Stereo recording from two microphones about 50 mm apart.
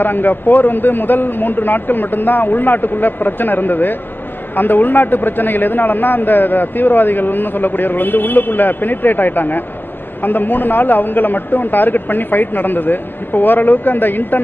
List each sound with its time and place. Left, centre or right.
0.0 s a man's voice: left